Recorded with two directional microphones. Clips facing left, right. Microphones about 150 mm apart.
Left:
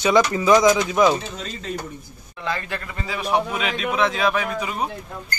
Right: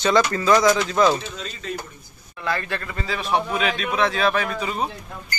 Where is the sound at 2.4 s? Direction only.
15° left (ahead or behind).